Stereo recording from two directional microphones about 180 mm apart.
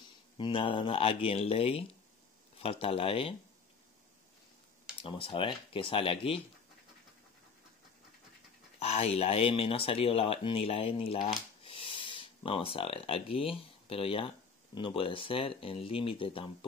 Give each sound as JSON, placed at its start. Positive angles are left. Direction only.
{"t": 0.4, "sound": "speech", "side_deg": 30}
{"t": 5.0, "sound": "speech", "side_deg": 30}
{"t": 8.7, "sound": "speech", "side_deg": 35}